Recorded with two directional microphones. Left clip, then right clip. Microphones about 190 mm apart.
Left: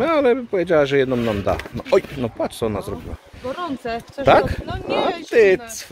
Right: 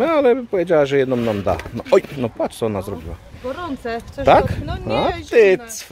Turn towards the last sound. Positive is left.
turn(degrees=-10)  # may be behind; listen again after turning